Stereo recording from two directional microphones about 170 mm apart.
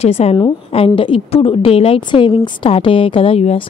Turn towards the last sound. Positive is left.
turn(degrees=35)  # may be behind; listen again after turning